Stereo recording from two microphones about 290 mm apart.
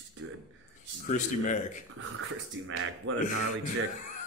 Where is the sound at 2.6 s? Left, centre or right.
Right.